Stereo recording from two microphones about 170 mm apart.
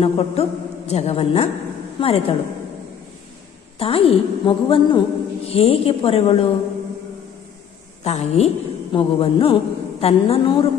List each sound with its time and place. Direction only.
0.0 s a woman's voice: 40° left (ahead or behind)
3.8 s a woman's voice: 35° left (ahead or behind)
8.0 s a woman's voice: 40° left (ahead or behind)